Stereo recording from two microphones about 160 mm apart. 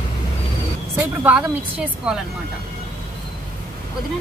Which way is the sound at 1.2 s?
10° right (ahead or behind).